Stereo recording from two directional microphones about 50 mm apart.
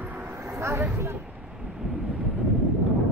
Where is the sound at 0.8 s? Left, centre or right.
Right.